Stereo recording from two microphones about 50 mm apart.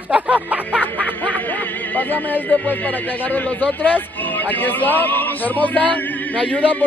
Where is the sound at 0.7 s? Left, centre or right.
Left.